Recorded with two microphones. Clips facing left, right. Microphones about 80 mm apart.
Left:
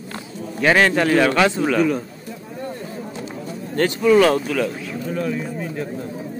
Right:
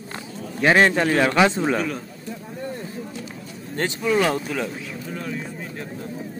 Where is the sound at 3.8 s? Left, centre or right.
Centre.